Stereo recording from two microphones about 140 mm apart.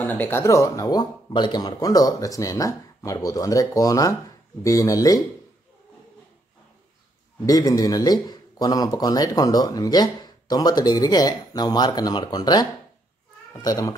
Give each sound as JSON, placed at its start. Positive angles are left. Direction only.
{"t": 0.0, "sound": "speech", "side_deg": 15}
{"t": 7.4, "sound": "speech", "side_deg": 25}